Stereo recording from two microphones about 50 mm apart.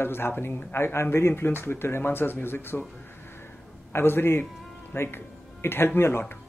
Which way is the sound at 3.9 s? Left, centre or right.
Left.